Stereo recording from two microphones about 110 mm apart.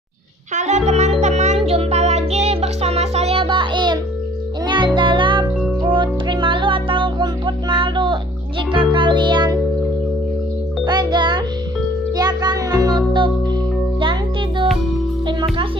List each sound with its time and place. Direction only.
0.6 s music: 90° right; by 9.6 s 40° right (ahead or behind)
10.9 s music: 40° right (ahead or behind)